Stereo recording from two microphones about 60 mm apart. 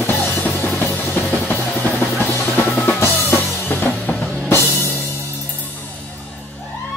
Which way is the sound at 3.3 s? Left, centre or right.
Left.